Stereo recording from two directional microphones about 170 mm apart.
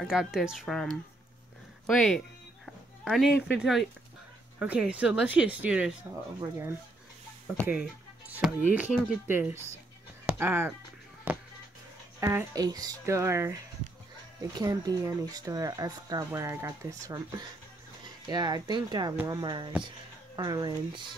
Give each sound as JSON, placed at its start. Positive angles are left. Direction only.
{"t": 0.0, "sound": "speech", "side_deg": 0}
{"t": 1.9, "sound": "speech", "side_deg": 0}
{"t": 7.6, "sound": "music", "side_deg": -10}
{"t": 8.7, "sound": "speech", "side_deg": -5}
{"t": 10.2, "sound": "music", "side_deg": -15}
{"t": 11.3, "sound": "a sound", "side_deg": -10}
{"t": 12.2, "sound": "speech", "side_deg": -15}